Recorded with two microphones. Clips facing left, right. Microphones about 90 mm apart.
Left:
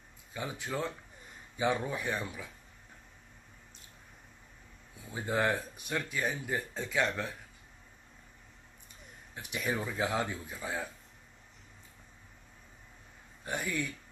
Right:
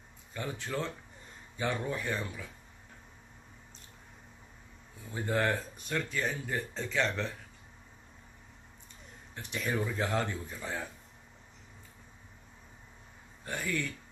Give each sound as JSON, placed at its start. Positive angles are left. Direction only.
{"t": 0.3, "sound": "speech", "side_deg": 10}
{"t": 5.1, "sound": "speech", "side_deg": 10}
{"t": 9.3, "sound": "speech", "side_deg": 10}
{"t": 13.5, "sound": "speech", "side_deg": 15}